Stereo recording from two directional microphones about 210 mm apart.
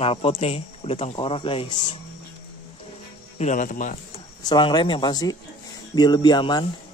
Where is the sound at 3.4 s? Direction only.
35° left (ahead or behind).